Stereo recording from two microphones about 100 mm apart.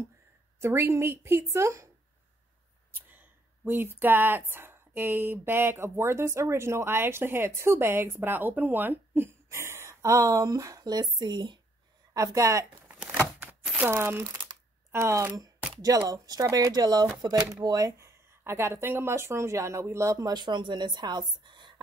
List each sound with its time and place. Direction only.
0.6 s speech: 25° right (ahead or behind)
2.9 s speech: 20° right (ahead or behind); by 11.6 s 50° right (ahead or behind)
12.1 s speech: 35° right (ahead or behind)
13.4 s crumpling: 20° right (ahead or behind)
14.9 s speech: 30° right (ahead or behind); by 21.7 s 50° right (ahead or behind)